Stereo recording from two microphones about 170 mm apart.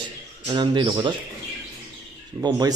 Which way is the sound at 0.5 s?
25° right (ahead or behind).